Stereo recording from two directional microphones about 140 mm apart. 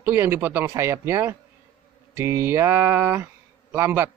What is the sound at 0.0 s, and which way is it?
A man's voice, 15° right (ahead or behind).